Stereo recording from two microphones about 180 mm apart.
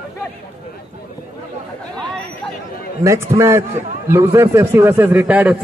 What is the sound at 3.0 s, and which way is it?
A man's voice, 15° right (ahead or behind).